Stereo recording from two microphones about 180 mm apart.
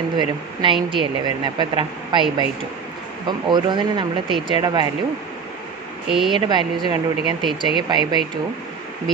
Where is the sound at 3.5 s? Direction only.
25° right (ahead or behind).